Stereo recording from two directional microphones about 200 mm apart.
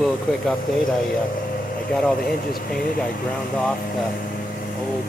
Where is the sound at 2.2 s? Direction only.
50° left (ahead or behind).